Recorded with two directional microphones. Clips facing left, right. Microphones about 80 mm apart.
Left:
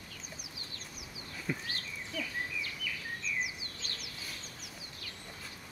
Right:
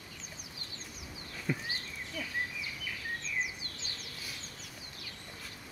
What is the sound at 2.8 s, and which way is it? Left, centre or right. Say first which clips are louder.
Bird vocalization: even; right.